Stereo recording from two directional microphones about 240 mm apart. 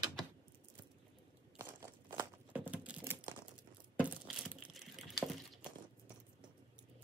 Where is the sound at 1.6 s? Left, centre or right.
Centre.